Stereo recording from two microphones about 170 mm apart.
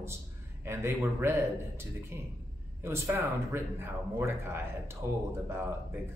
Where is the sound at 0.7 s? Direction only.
15° right (ahead or behind).